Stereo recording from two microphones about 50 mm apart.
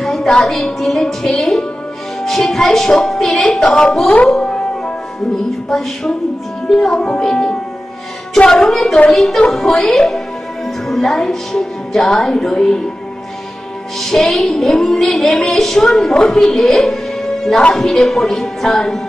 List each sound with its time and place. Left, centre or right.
0.0 s music: centre
4.1 s speech: centre
6.7 s music: centre
13.9 s music: centre